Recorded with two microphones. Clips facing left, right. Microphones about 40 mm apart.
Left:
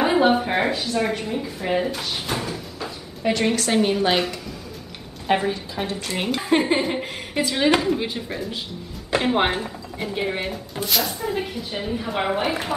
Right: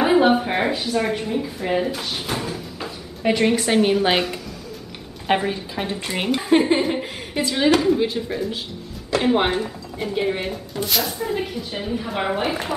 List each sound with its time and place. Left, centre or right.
0.0 s a woman's voice: centre
5.2 s a woman's voice: centre
6.2 s speech: centre